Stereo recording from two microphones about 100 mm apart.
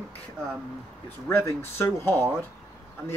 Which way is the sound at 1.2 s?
20° left (ahead or behind).